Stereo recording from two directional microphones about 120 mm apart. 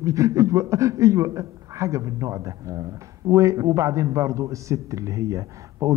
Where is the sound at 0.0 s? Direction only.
25° right (ahead or behind).